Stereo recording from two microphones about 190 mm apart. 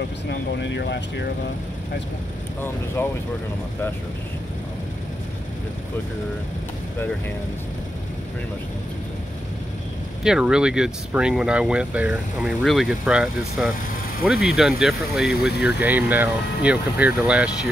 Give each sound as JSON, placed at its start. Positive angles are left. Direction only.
{"t": 0.3, "sound": "speech", "side_deg": 65}
{"t": 3.0, "sound": "speech", "side_deg": 10}
{"t": 10.2, "sound": "speech", "side_deg": -5}